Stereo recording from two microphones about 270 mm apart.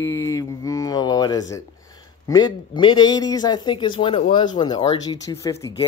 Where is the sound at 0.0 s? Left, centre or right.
Centre.